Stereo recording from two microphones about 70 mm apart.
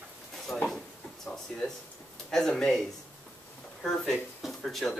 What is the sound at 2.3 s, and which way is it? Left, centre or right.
Speech, centre.